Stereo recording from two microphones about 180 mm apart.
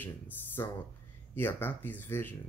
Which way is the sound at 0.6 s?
15° left (ahead or behind).